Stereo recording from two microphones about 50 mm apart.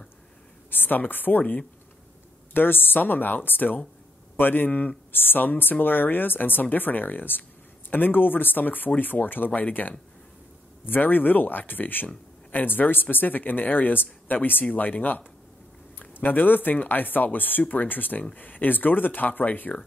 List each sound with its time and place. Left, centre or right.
0.7 s speech: left
1.4 s speech: left
2.5 s a woman's voice: left
5.1 s speech: left